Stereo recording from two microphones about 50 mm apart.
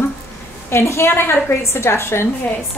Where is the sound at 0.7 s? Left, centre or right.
Left.